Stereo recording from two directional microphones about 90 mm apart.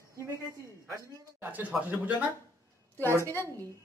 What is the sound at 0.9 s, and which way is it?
Speech, 20° right (ahead or behind).